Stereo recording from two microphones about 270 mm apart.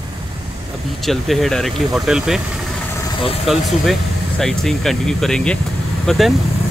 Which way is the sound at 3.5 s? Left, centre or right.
Centre.